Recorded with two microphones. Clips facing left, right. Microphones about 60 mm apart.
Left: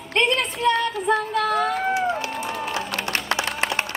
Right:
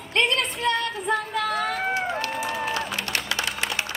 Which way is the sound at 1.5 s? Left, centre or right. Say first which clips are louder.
Left 3 dB; centre.